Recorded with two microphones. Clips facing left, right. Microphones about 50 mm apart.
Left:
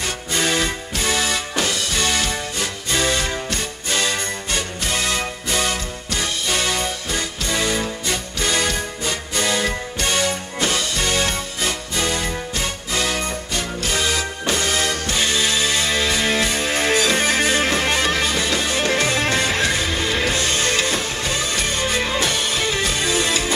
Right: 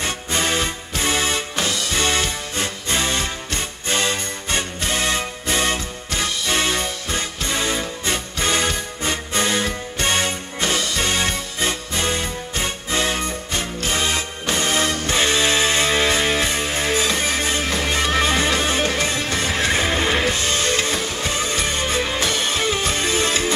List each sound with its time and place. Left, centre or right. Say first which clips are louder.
0.0 s music: even; right
16.6 s music: left 2 dB; left
18.1 s music: right 2 dB; right
18.9 s music: left 3 dB; left
19.6 s music: right 1 dB; right